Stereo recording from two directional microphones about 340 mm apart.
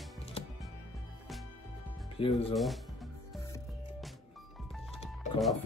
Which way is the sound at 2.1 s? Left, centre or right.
Centre.